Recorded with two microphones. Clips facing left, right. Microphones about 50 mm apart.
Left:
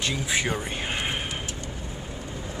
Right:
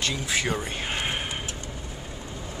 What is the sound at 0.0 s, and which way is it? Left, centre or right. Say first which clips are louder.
Speech: left 1 dB; centre.